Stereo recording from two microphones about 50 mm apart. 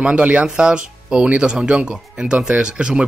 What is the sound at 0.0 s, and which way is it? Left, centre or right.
Speech, right.